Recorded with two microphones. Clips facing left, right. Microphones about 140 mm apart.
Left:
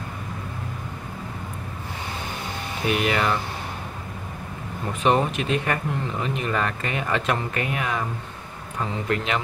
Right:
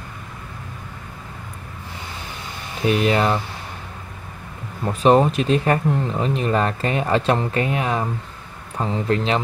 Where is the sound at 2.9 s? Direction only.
30° right (ahead or behind).